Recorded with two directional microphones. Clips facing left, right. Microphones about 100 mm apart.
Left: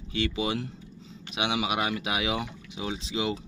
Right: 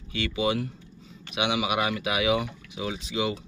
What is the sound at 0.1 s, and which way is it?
Speech, 30° left (ahead or behind).